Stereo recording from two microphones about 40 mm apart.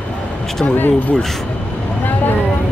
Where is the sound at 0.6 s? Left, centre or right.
Left.